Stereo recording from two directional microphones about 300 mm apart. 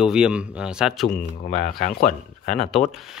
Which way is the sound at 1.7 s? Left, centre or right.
Left.